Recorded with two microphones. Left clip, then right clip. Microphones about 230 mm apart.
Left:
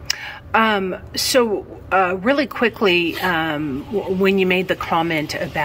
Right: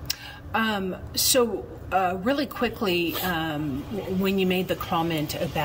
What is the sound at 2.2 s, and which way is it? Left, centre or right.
Speech, left.